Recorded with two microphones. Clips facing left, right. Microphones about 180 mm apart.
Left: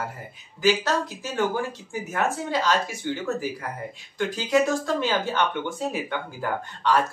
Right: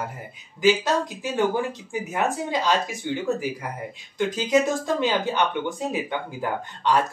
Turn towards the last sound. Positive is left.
turn(degrees=-15)  # may be behind; listen again after turning